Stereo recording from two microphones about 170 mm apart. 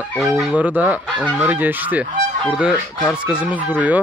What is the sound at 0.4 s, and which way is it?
Speech, 10° right (ahead or behind).